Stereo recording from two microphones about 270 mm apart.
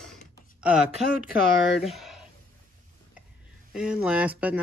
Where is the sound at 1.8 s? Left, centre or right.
Centre.